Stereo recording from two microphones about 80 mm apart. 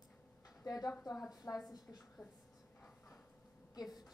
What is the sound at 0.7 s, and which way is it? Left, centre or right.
Speech, left.